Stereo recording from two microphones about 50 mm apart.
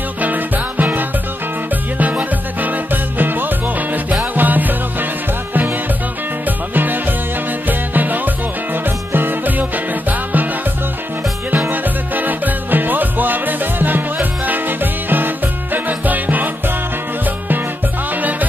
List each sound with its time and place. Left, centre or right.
0.2 s music: right
6.7 s music: right
11.6 s music: right